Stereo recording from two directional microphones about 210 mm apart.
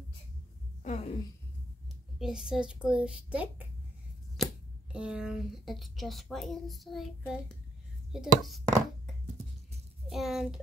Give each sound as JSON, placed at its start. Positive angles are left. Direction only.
{"t": 0.8, "sound": "a woman's voice", "side_deg": 30}
{"t": 2.1, "sound": "speech", "side_deg": -5}
{"t": 4.4, "sound": "a sound", "side_deg": 0}
{"t": 4.9, "sound": "speech", "side_deg": -5}
{"t": 10.0, "sound": "speech", "side_deg": 0}